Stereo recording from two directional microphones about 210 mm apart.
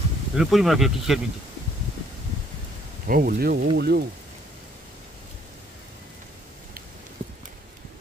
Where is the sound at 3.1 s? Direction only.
45° right (ahead or behind).